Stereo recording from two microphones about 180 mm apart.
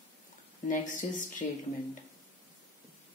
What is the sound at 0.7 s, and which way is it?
Speech, 45° left (ahead or behind).